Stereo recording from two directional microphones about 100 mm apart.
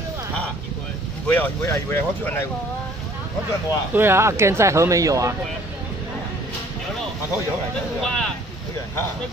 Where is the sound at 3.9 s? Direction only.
25° right (ahead or behind).